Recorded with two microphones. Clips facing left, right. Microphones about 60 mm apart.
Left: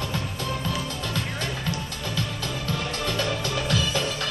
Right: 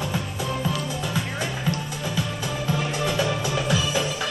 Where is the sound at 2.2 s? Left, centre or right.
Centre.